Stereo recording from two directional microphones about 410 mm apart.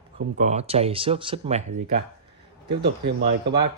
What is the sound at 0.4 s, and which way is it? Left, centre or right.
Speech, centre.